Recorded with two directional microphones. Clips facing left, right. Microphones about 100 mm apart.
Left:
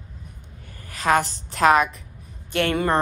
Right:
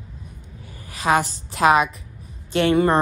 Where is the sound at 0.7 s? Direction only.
15° right (ahead or behind).